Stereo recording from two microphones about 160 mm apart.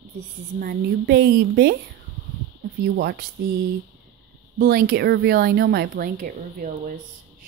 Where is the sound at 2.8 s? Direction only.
80° right.